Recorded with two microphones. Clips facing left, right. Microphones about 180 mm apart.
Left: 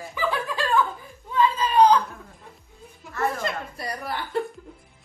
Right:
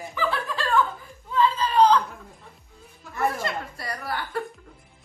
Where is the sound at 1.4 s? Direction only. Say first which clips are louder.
Left 1 dB; 15° left (ahead or behind).